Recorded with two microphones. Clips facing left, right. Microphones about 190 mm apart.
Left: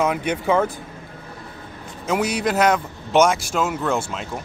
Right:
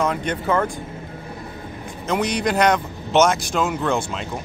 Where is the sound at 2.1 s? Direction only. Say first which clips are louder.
Even; 5° left (ahead or behind).